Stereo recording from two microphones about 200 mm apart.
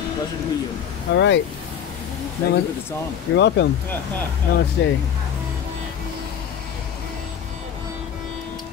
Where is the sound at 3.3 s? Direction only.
60° left (ahead or behind).